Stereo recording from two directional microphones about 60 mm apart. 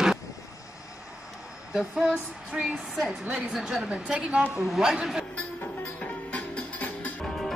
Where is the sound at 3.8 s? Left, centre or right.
Centre.